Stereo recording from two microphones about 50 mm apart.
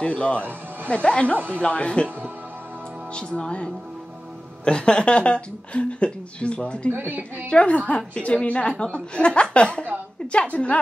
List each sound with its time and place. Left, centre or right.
0.0 s a woman's voice: left
3.2 s a woman's voice: centre
6.9 s a woman's voice: right
7.4 s a woman's voice: left